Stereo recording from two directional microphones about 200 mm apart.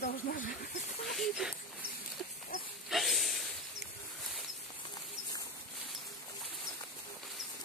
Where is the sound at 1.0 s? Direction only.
Centre (ahead or behind).